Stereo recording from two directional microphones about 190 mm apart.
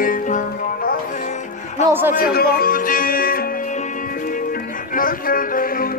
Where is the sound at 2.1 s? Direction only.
50° left (ahead or behind).